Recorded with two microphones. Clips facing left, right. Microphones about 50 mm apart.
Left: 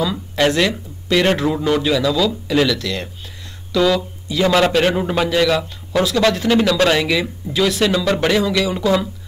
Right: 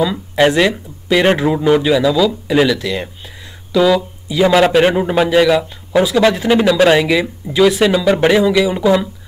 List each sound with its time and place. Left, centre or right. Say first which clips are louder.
0.0 s a man's voice: right 4 dB; centre